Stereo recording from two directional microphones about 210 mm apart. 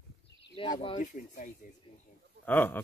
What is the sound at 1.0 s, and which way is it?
Speech, 35° left (ahead or behind).